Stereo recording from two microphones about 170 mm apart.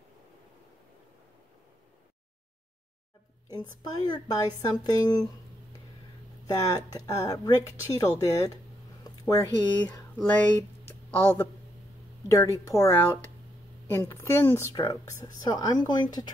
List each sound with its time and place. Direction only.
3.4 s a woman's voice: 25° left (ahead or behind)
6.4 s a woman's voice: 20° left (ahead or behind)
10.9 s a sound: 10° left (ahead or behind)
12.3 s a woman's voice: 15° left (ahead or behind)